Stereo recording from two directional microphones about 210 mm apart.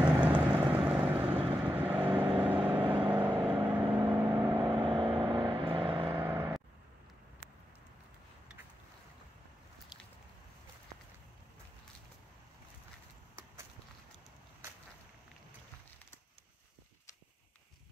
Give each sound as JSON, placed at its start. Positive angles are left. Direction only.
{"t": 0.0, "sound": "vehicle", "side_deg": -5}
{"t": 2.2, "sound": "vehicle", "side_deg": -25}
{"t": 2.5, "sound": "vehicle", "side_deg": -5}
{"t": 2.8, "sound": "vehicle", "side_deg": -25}
{"t": 3.1, "sound": "vehicle", "side_deg": -5}
{"t": 4.7, "sound": "vehicle", "side_deg": -25}
{"t": 6.1, "sound": "vehicle", "side_deg": -10}